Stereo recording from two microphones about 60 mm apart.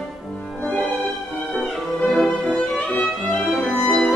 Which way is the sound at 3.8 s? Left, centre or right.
Centre.